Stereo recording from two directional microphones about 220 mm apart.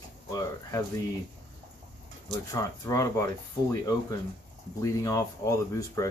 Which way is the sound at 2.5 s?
15° left (ahead or behind).